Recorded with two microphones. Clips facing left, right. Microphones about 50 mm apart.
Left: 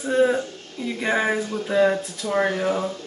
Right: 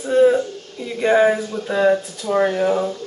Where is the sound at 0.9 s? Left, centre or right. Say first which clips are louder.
Right 7 dB; centre.